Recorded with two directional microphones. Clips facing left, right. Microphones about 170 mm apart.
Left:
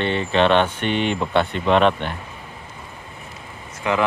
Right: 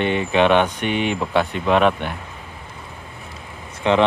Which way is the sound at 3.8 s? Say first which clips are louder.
Right 4 dB; 25° right (ahead or behind).